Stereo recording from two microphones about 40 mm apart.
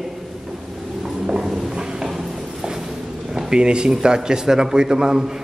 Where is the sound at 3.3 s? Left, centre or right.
Centre.